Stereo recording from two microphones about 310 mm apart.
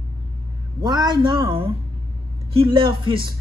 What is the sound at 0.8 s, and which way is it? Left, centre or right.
Speech, centre.